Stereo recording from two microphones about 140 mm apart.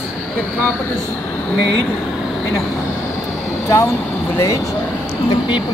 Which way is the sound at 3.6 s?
20° left (ahead or behind).